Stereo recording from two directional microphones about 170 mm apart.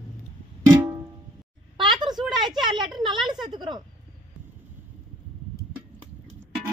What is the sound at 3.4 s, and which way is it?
Speech, 25° right (ahead or behind).